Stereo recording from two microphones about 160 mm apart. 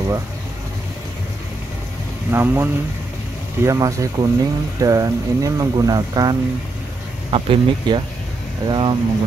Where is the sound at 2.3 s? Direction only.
15° right (ahead or behind).